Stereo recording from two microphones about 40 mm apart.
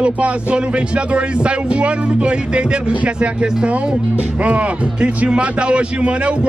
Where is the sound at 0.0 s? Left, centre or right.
Right.